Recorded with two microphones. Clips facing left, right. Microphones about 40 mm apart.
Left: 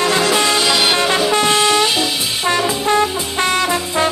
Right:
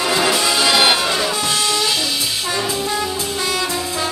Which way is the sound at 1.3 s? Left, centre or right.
Left.